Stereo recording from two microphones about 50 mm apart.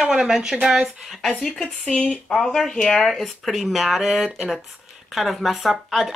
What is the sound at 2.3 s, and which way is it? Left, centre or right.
Speech, centre.